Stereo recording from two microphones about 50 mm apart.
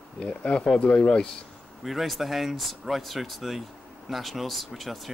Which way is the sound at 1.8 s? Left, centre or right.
Centre.